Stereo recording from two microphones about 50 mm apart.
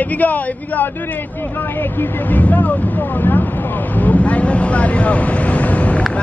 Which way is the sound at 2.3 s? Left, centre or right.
Left.